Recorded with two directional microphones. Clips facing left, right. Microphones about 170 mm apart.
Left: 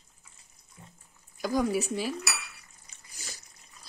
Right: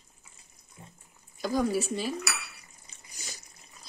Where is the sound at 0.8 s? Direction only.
20° right (ahead or behind).